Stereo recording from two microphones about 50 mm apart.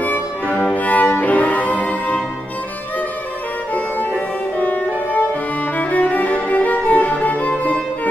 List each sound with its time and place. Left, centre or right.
0.5 s music: centre
0.7 s music: left
3.7 s violin: left
5.8 s music: left